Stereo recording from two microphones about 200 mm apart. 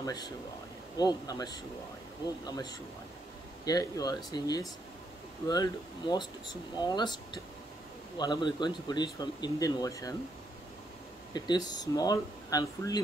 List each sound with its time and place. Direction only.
0.0 s speech: 20° left (ahead or behind)
8.2 s speech: 20° left (ahead or behind)
11.3 s speech: 20° left (ahead or behind)